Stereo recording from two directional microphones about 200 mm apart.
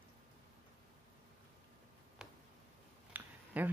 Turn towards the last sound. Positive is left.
turn(degrees=-10)  # may be behind; listen again after turning